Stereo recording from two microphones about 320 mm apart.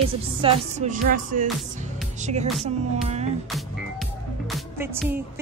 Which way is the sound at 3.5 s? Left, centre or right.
Centre.